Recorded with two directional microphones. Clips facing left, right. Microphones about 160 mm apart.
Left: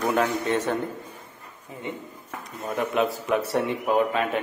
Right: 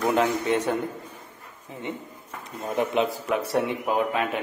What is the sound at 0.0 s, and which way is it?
Speech, 20° right (ahead or behind).